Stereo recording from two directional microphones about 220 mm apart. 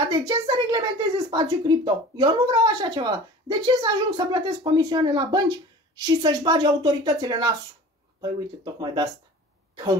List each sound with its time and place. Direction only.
0.1 s speech: 20° right (ahead or behind)
8.7 s speech: 20° right (ahead or behind)